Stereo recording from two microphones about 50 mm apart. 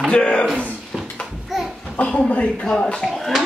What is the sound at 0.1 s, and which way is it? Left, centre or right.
Speech, left.